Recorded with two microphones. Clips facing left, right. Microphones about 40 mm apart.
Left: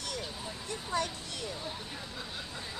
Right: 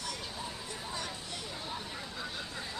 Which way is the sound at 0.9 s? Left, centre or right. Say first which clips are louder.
Left 9 dB; left.